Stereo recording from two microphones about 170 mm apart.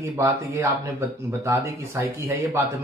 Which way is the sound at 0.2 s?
15° right (ahead or behind).